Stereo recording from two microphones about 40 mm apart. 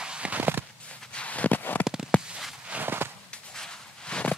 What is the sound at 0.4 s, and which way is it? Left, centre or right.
Walk, right.